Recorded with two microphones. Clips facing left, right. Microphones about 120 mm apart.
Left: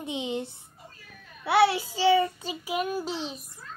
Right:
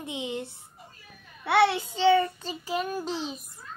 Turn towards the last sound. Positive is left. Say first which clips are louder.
# even
turn(degrees=0)  # may be behind; listen again after turning